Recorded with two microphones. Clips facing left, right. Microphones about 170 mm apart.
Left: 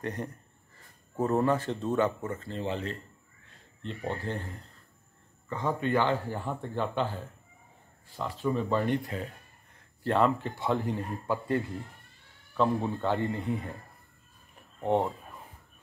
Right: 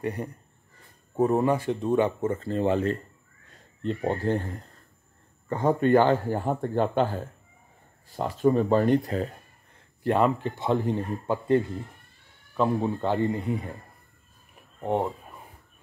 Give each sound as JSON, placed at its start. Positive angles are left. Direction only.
{"t": 0.0, "sound": "speech", "side_deg": -10}
{"t": 2.2, "sound": "speech", "side_deg": -30}
{"t": 2.5, "sound": "speech", "side_deg": -50}
{"t": 5.5, "sound": "speech", "side_deg": -45}
{"t": 8.2, "sound": "speech", "side_deg": -45}
{"t": 10.0, "sound": "a man's voice", "side_deg": -15}